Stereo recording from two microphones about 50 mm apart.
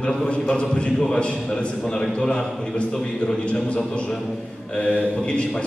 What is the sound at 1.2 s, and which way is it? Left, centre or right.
A man's voice, left.